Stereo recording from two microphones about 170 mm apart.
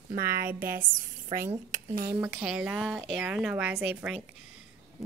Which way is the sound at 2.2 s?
5° right (ahead or behind).